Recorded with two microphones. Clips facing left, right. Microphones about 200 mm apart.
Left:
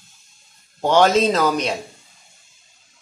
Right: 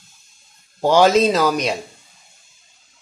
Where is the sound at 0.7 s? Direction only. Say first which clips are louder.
Right 2 dB; 5° right (ahead or behind).